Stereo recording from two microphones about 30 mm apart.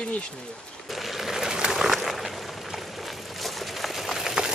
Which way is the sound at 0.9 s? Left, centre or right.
Centre.